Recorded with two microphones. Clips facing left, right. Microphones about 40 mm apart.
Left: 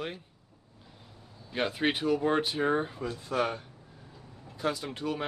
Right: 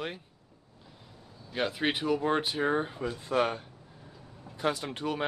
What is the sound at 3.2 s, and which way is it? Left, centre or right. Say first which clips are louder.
Speech: right 3 dB; right.